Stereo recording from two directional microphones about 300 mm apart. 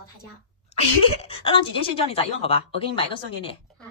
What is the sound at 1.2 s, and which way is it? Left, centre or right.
A woman's voice, centre.